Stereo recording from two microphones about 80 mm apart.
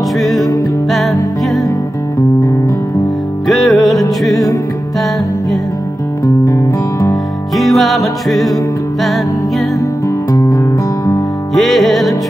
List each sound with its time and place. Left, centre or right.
0.2 s music: centre
3.4 s music: centre
6.2 s music: left
7.5 s music: centre
9.8 s music: left
11.5 s music: centre